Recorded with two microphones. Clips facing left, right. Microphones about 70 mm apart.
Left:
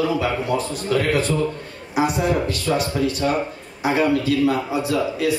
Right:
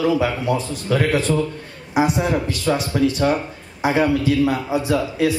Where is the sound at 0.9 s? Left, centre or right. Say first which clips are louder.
Right 2 dB; right.